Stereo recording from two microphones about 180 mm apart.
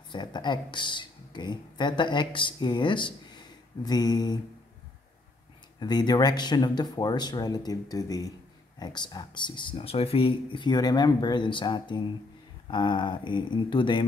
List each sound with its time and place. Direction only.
0.1 s speech: 25° left (ahead or behind)
5.8 s speech: 25° left (ahead or behind)